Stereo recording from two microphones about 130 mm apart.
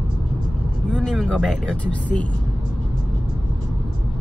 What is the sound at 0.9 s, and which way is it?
Speech, 5° left (ahead or behind).